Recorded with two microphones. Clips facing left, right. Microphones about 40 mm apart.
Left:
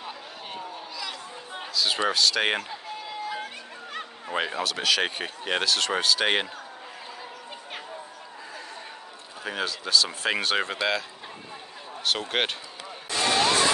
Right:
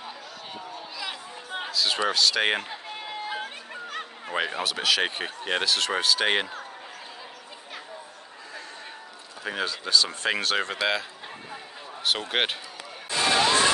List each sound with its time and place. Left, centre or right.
1.7 s speech: centre
3.0 s a sound: right
3.9 s speech: centre
9.4 s speech: centre
12.0 s speech: centre
13.1 s music: right